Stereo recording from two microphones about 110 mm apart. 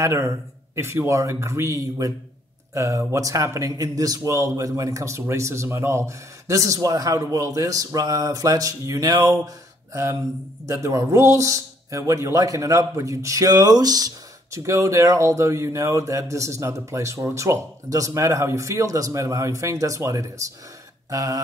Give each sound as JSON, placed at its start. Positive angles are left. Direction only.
{"t": 0.0, "sound": "speech", "side_deg": -25}
{"t": 10.7, "sound": "speech", "side_deg": -30}
{"t": 21.1, "sound": "a sound", "side_deg": -30}